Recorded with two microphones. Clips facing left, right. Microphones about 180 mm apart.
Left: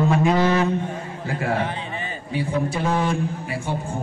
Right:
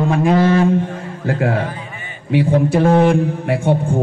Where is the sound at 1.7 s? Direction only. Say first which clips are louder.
Left 1 dB; 30° left (ahead or behind).